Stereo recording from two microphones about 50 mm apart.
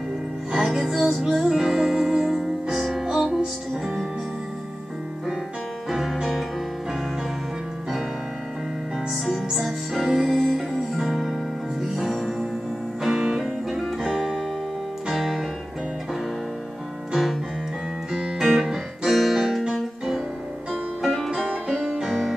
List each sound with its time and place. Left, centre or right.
0.5 s music: centre
5.9 s music: centre
9.1 s music: centre
15.0 s piano: centre
17.1 s music: centre
18.4 s music: centre
21.3 s music: centre